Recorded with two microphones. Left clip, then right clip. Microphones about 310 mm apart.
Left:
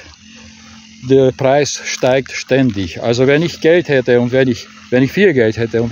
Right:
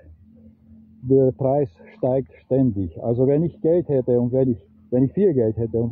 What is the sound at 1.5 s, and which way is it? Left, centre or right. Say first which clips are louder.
Speech: left 9 dB; left.